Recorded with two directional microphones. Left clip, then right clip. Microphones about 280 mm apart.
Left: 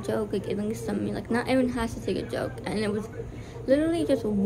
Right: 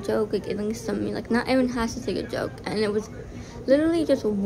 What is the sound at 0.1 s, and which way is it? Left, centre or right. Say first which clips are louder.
A woman's voice: right 4 dB; centre.